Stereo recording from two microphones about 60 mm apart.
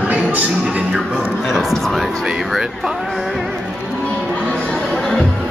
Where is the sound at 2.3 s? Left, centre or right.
Centre.